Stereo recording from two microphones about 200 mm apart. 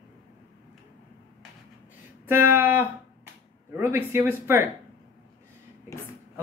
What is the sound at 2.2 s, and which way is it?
Speech, 10° right (ahead or behind).